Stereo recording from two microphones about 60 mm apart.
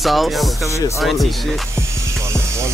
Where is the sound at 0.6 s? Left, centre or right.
Left.